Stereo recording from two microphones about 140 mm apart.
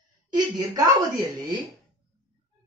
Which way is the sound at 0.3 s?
25° right (ahead or behind).